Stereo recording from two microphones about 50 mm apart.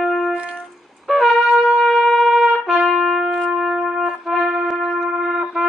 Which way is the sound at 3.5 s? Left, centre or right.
Centre.